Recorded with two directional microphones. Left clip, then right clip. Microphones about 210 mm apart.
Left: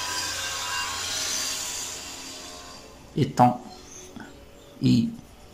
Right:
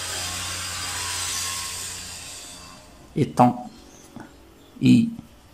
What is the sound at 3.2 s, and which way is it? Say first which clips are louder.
Speech: right 1 dB; 10° right (ahead or behind).